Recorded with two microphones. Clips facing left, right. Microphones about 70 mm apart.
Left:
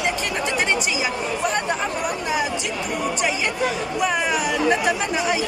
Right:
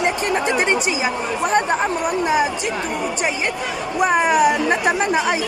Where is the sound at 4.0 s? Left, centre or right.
Right.